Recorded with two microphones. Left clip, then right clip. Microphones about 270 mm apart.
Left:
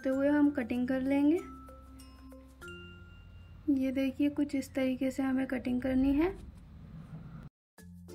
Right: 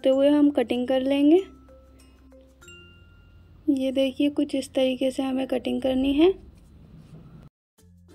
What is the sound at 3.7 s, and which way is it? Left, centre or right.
Speech, right.